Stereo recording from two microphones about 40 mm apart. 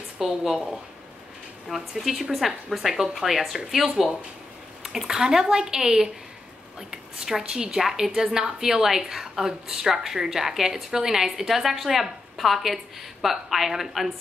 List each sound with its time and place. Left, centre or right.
0.2 s a woman's voice: centre
1.7 s a woman's voice: centre
6.8 s a sound: centre
7.2 s a woman's voice: centre